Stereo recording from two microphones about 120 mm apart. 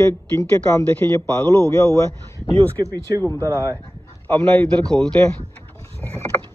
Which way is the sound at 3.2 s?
25° left (ahead or behind).